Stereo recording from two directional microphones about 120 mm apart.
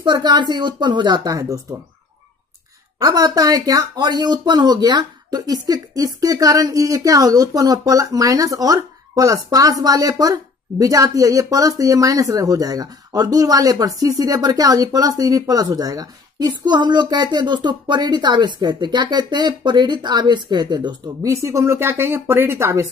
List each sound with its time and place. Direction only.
0.0 s speech: 35° right (ahead or behind)
3.0 s speech: 35° right (ahead or behind)